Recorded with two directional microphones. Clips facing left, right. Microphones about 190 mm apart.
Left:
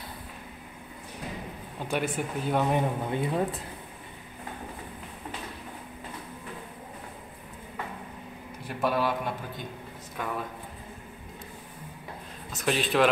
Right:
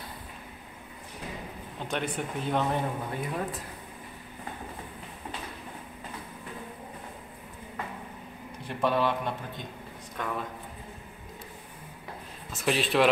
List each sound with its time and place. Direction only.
1.8 s speech: 10° left (ahead or behind)
2.7 s speech: 25° left (ahead or behind)
8.6 s a man's voice: 5° left (ahead or behind)
12.5 s speech: centre (ahead or behind)